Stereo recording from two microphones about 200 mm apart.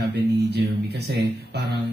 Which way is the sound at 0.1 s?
55° right (ahead or behind).